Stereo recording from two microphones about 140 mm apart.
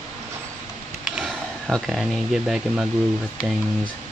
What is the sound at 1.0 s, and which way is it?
Speech, centre (ahead or behind).